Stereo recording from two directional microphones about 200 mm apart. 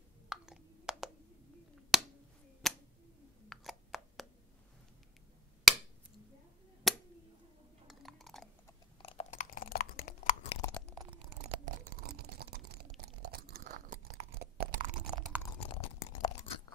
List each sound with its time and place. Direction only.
0.3 s a sound: 5° right (ahead or behind)
1.9 s finger snapping: centre (ahead or behind)
2.6 s a sound: centre (ahead or behind)
6.8 s a sound: centre (ahead or behind)
9.0 s chewing: 30° left (ahead or behind)
10.6 s chewing: 5° left (ahead or behind)
11.6 s crunch: 45° right (ahead or behind)
14.8 s chewing: 20° right (ahead or behind)
15.6 s chewing: 30° left (ahead or behind)